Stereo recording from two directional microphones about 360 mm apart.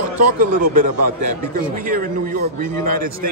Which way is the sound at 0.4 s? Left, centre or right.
Right.